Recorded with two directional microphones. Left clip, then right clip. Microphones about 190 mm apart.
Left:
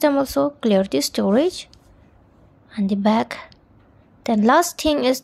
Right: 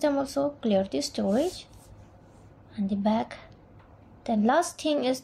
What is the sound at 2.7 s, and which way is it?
A woman's voice, 30° left (ahead or behind).